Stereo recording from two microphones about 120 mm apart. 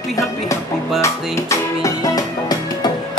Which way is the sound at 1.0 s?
25° left (ahead or behind).